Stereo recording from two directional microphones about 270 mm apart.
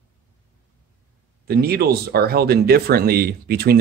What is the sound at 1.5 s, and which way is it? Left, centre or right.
Speech, right.